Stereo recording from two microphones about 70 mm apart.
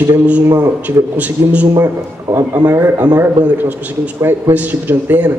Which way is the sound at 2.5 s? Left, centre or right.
Right.